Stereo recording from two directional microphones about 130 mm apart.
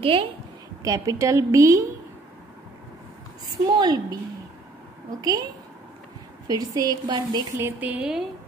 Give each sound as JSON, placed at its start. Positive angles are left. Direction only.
{"t": 0.0, "sound": "a woman's voice", "side_deg": -45}
{"t": 0.8, "sound": "speech", "side_deg": -25}
{"t": 3.7, "sound": "a woman's voice", "side_deg": -30}
{"t": 6.4, "sound": "speech", "side_deg": -30}
{"t": 7.6, "sound": "a woman's voice", "side_deg": -10}